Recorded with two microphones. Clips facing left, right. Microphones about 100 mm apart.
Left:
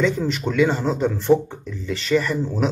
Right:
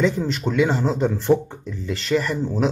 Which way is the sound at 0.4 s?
5° right (ahead or behind).